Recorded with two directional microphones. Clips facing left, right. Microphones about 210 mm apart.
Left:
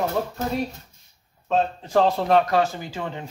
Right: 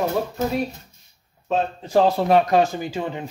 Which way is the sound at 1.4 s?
10° right (ahead or behind).